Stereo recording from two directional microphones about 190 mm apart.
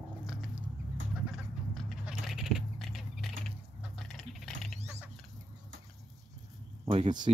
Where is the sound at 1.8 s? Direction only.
Centre (ahead or behind).